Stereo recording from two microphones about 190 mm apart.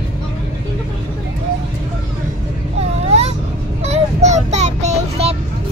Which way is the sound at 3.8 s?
35° right (ahead or behind).